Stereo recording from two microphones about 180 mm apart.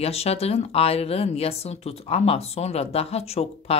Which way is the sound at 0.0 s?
35° left (ahead or behind).